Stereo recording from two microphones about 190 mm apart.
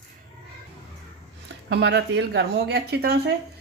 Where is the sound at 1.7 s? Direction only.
65° right (ahead or behind).